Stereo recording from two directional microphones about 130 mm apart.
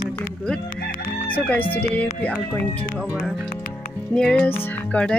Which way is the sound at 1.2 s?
10° left (ahead or behind).